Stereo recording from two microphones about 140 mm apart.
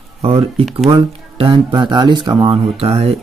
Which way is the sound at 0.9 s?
40° right (ahead or behind).